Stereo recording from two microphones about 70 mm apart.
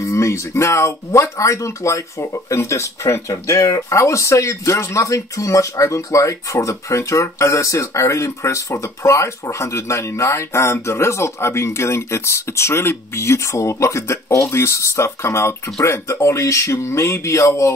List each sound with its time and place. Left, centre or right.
0.0 s speech: left